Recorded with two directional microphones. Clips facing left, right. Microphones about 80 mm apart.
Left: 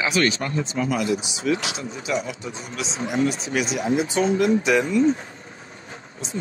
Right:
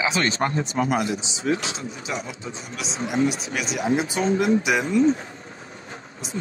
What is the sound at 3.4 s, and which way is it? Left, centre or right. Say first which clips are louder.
Speech: left 4 dB; centre.